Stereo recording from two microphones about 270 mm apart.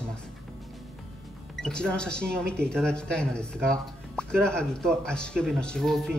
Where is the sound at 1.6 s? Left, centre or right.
Centre.